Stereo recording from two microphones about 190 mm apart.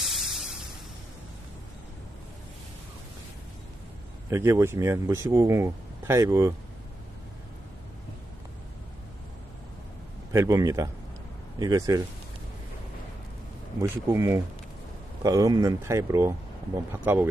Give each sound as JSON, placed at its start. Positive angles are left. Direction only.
{"t": 0.0, "sound": "music", "side_deg": 0}
{"t": 4.3, "sound": "speech", "side_deg": -15}
{"t": 10.3, "sound": "speech", "side_deg": -15}
{"t": 13.7, "sound": "speech", "side_deg": -15}